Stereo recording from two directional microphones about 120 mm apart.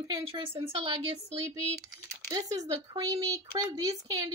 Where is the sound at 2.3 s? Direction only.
30° right (ahead or behind).